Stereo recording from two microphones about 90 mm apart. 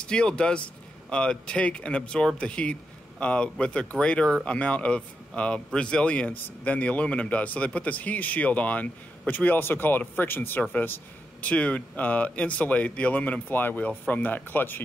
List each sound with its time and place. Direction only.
0.0 s speech: 10° left (ahead or behind)